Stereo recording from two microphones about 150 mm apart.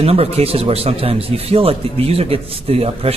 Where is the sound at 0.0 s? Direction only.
40° right (ahead or behind).